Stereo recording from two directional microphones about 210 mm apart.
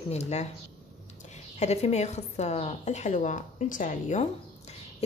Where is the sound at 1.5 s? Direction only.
30° left (ahead or behind).